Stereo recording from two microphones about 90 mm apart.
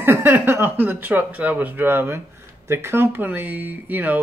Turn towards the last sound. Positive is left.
turn(degrees=-20)  # may be behind; listen again after turning